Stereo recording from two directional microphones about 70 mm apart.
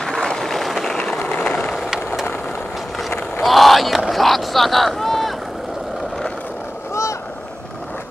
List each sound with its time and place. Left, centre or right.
0.0 s a sound: centre
0.9 s vehicle: centre
1.2 s vehicle: left
3.4 s speech: centre
6.9 s boat: left